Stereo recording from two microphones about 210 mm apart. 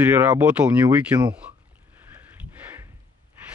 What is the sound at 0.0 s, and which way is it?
Speech, 10° right (ahead or behind).